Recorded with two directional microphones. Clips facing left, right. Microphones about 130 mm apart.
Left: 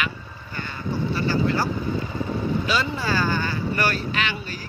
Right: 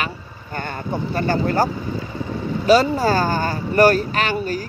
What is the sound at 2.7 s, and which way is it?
Speech, 40° right (ahead or behind).